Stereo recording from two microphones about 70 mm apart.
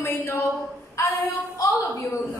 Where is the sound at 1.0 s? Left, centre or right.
Left.